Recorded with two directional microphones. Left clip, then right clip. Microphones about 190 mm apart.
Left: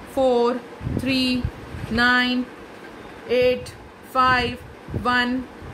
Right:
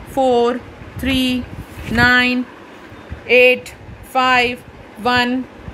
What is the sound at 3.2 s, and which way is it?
Speech, 35° right (ahead or behind).